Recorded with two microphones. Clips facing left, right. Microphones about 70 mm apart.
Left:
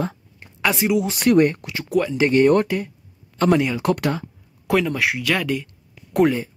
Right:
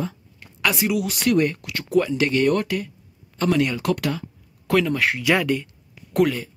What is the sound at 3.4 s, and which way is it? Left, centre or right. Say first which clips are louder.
Speech: left 4 dB; left.